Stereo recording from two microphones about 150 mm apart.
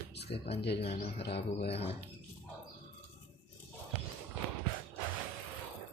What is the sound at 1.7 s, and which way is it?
Speech, 40° left (ahead or behind).